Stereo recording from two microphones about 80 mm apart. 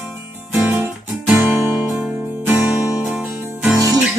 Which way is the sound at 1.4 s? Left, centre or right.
Right.